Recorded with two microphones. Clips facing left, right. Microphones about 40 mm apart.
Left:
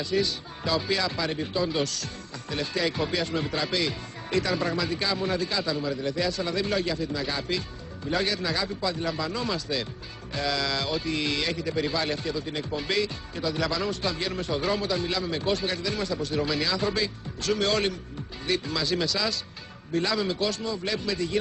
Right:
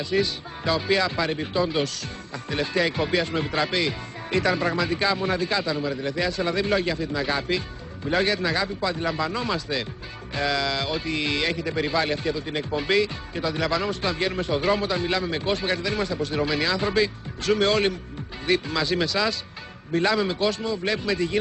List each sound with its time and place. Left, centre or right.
0.0 s speech: right